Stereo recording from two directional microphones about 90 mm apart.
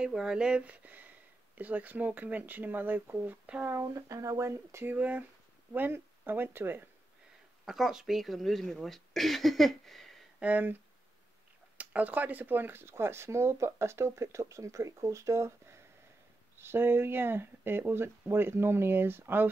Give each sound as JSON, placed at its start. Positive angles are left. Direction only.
{"t": 0.0, "sound": "speech", "side_deg": -5}
{"t": 3.6, "sound": "speech", "side_deg": -35}
{"t": 4.9, "sound": "speech", "side_deg": -20}
{"t": 7.6, "sound": "speech", "side_deg": -5}
{"t": 10.4, "sound": "speech", "side_deg": -20}